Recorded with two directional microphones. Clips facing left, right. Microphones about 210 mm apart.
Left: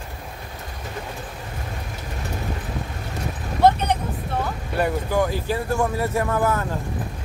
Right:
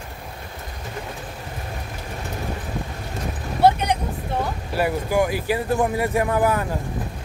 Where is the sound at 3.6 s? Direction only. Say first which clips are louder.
Even; 10° right (ahead or behind).